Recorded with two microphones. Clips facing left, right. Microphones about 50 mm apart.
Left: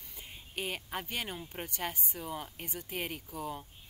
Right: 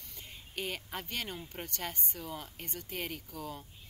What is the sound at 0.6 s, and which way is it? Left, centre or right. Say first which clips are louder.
Speech: left 1 dB; centre.